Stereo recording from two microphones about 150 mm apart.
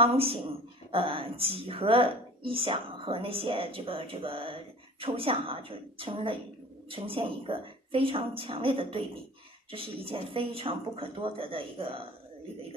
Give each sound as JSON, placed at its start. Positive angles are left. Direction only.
{"t": 0.0, "sound": "speech", "side_deg": -40}